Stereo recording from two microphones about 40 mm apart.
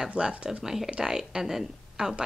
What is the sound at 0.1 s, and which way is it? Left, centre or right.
A woman's voice, right.